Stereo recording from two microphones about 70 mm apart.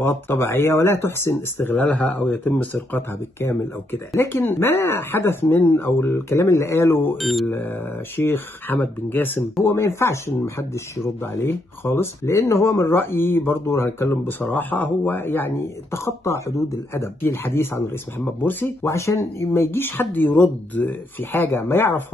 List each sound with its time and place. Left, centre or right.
0.0 s speech: left
1.8 s speech: centre; by 7.2 s left
7.2 s speech: centre
7.4 s speech: left
16.0 s speech: left
18.9 s speech: left